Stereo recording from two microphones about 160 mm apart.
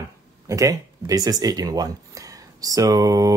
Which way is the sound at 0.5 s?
20° right (ahead or behind).